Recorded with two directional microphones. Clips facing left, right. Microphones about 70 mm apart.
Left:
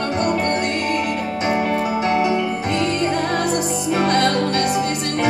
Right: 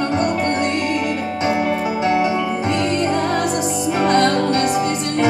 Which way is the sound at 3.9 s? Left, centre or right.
Right.